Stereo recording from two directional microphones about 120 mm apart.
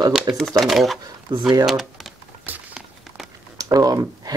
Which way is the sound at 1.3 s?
35° right (ahead or behind).